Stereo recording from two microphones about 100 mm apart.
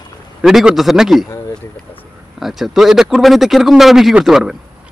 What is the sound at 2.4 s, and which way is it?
Speech, centre (ahead or behind).